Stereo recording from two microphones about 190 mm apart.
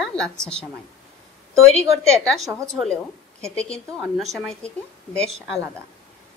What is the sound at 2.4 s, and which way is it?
Speech, 15° right (ahead or behind).